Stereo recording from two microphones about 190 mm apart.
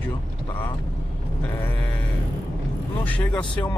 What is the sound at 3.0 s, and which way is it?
Speech, 10° left (ahead or behind).